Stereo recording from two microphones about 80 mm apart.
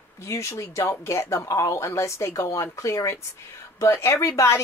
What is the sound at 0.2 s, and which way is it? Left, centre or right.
Speech, left.